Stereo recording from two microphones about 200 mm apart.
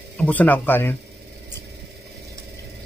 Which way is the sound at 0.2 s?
10° left (ahead or behind).